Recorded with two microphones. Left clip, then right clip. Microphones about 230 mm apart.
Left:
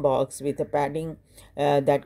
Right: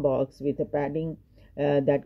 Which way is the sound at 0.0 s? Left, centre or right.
Left.